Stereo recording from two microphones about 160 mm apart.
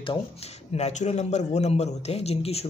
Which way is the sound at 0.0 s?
35° left (ahead or behind).